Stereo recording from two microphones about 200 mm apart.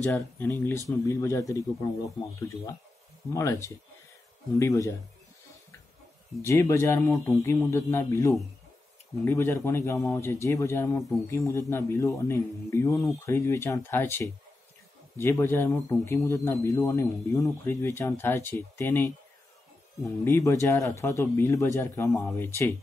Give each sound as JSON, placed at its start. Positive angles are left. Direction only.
{"t": 0.0, "sound": "a man's voice", "side_deg": 10}
{"t": 6.4, "sound": "a man's voice", "side_deg": 15}